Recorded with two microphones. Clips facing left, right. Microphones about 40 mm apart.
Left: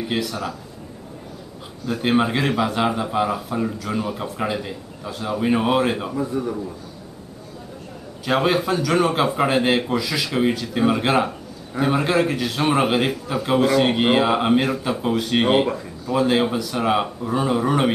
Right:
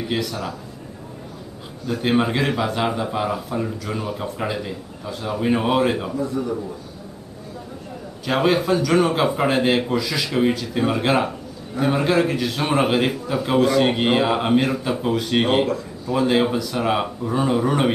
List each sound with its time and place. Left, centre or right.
0.1 s speech: centre
1.9 s speech: centre
6.1 s speech: centre
8.3 s speech: centre